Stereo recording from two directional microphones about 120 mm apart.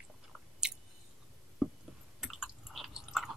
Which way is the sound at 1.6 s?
5° right (ahead or behind).